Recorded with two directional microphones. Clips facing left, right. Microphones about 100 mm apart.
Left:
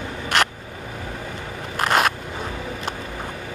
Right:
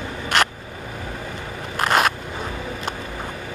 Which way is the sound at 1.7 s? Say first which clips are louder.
Right 1 dB; 20° right (ahead or behind).